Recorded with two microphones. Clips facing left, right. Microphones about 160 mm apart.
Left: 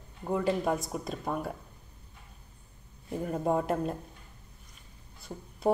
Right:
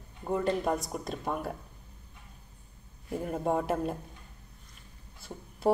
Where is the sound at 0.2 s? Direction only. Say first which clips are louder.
Even; centre (ahead or behind).